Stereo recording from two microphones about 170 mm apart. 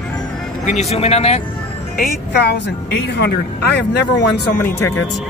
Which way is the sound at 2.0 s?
75° left (ahead or behind).